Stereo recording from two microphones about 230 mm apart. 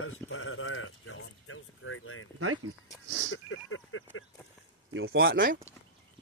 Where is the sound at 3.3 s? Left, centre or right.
Left.